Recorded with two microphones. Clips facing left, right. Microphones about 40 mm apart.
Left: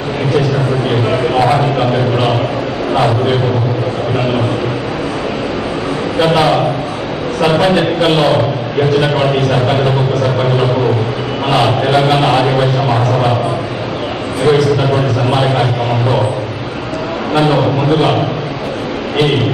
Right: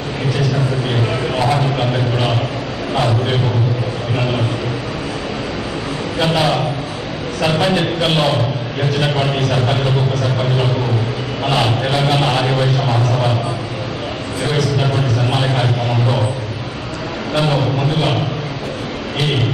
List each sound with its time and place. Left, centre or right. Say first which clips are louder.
0.8 s a man's voice: left 5 dB; centre
2.9 s a sound: left 4 dB; centre
6.1 s a man's voice: left 5 dB; centre
11.4 s a man's voice: left 5 dB; centre
14.6 s a man's voice: left 5 dB; centre
17.3 s a man's voice: left 5 dB; centre